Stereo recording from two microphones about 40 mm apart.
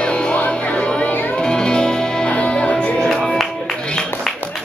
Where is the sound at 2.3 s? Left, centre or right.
Left.